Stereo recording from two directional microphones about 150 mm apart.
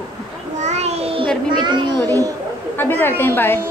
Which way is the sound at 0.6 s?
50° right (ahead or behind).